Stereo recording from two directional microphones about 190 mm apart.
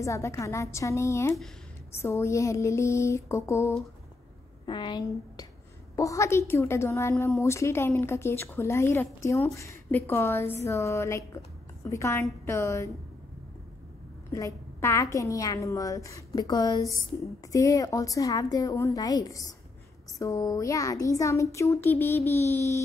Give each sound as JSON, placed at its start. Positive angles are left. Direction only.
{"t": 0.0, "sound": "a woman's voice", "side_deg": 15}
{"t": 4.6, "sound": "a woman's voice", "side_deg": 25}
{"t": 14.3, "sound": "a woman's voice", "side_deg": 15}